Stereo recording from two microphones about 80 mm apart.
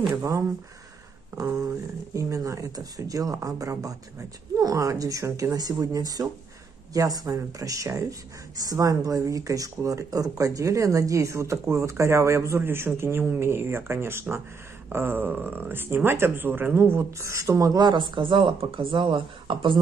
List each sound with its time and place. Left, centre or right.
0.1 s speech: right
1.3 s a sound: right
2.1 s speech: right
12.5 s speech: right
17.8 s speech: right